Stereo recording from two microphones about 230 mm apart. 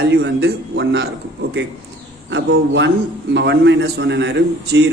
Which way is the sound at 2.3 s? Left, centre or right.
Right.